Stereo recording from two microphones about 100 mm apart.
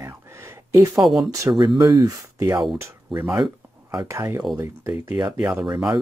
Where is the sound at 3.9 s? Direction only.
30° right (ahead or behind).